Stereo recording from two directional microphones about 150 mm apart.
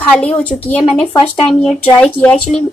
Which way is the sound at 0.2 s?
10° left (ahead or behind).